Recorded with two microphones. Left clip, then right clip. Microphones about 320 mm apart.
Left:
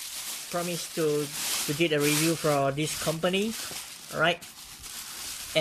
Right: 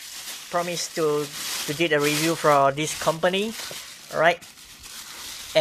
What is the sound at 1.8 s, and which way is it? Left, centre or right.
Speech, centre.